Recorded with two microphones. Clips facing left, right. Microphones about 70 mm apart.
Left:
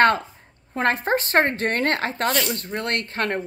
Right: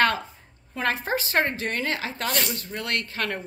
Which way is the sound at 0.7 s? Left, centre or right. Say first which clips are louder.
Left 5 dB; left.